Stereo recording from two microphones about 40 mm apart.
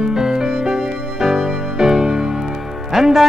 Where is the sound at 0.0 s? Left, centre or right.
Centre.